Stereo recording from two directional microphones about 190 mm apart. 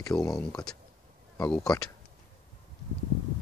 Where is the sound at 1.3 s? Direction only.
15° left (ahead or behind).